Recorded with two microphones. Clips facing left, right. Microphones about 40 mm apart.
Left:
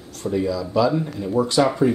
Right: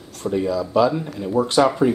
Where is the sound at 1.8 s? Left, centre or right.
Right.